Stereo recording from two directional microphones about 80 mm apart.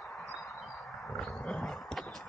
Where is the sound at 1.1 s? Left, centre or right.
Centre.